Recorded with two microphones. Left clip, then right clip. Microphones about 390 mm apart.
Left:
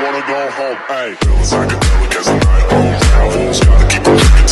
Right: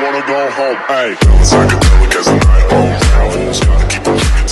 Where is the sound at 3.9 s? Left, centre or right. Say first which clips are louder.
Left 4 dB; left.